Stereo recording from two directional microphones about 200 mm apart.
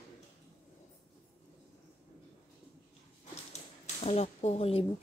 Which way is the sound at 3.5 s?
35° left (ahead or behind).